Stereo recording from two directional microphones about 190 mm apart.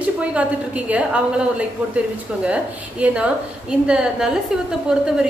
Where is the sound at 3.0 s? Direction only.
5° right (ahead or behind).